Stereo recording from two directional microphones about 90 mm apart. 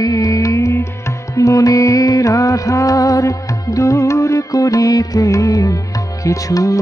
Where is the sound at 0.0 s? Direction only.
40° left (ahead or behind).